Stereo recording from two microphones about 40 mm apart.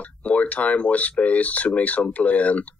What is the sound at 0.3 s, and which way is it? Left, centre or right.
Speech, left.